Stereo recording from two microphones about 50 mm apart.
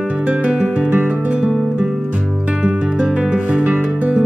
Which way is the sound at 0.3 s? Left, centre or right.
Right.